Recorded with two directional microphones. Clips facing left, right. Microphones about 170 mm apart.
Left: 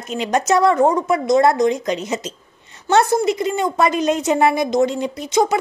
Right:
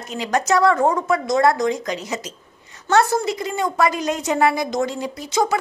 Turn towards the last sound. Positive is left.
turn(degrees=20)  # may be behind; listen again after turning